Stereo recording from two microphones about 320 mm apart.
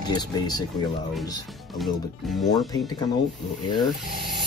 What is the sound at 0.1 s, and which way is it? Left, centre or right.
Speech, centre.